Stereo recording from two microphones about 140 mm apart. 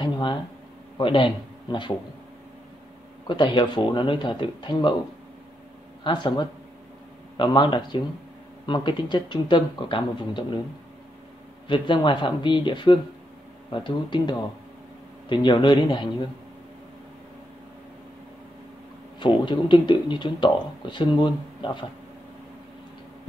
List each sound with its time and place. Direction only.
0.0 s a sound: 35° left (ahead or behind)
0.9 s a man's voice: 35° left (ahead or behind)
3.3 s speech: 35° left (ahead or behind)
6.0 s speech: 35° left (ahead or behind)
11.6 s speech: 35° left (ahead or behind)
19.1 s speech: 35° left (ahead or behind)